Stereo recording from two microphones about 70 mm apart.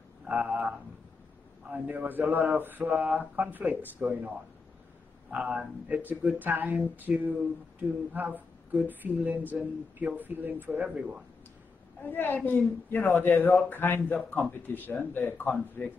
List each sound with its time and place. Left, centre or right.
0.3 s speech: right
5.3 s speech: centre
11.0 s speech: centre
12.0 s speech: left